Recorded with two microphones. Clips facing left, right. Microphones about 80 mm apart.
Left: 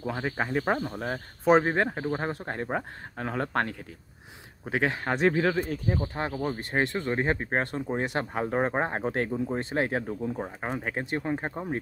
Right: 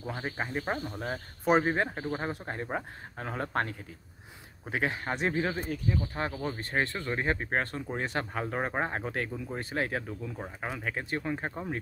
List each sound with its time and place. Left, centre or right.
0.0 s speech: left
0.7 s speech: left
2.1 s speech: left
5.2 s speech: left
5.7 s speech: left
6.3 s speech: centre; by 9.5 s left
9.5 s speech: left
11.1 s speech: left